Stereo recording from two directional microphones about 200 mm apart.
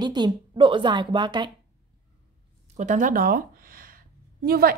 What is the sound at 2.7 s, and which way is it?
A woman's voice, 40° right (ahead or behind).